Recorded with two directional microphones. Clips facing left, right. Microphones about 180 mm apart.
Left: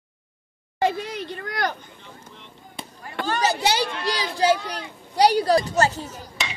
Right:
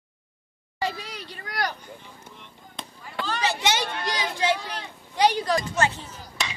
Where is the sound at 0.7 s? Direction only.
50° left (ahead or behind).